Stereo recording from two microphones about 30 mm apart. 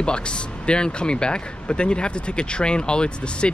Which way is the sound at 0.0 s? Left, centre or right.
Left.